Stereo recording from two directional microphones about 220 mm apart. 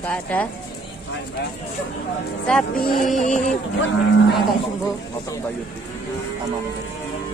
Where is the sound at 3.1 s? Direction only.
35° left (ahead or behind).